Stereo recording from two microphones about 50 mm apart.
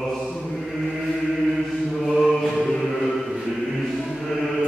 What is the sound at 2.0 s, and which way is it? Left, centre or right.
Mantra, centre.